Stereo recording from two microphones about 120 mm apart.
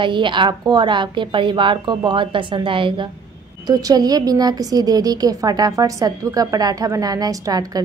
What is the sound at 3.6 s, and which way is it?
Speech, 35° right (ahead or behind).